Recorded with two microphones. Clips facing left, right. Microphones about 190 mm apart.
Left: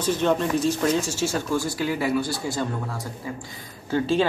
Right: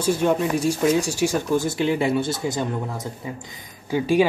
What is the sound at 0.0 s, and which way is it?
Speech, 10° right (ahead or behind).